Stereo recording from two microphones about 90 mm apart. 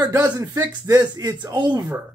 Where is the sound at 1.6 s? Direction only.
60° right (ahead or behind).